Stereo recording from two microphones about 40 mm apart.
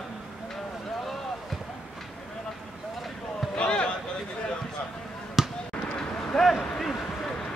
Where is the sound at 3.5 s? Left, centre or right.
Left.